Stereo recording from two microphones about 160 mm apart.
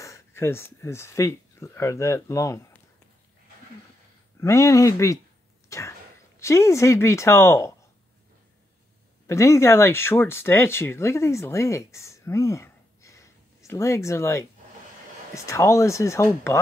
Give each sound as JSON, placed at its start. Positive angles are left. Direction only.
{"t": 0.0, "sound": "speech", "side_deg": 15}
{"t": 4.4, "sound": "speech", "side_deg": 20}
{"t": 5.7, "sound": "a sound", "side_deg": 20}
{"t": 6.4, "sound": "a woman's voice", "side_deg": 20}
{"t": 9.3, "sound": "a woman's voice", "side_deg": 20}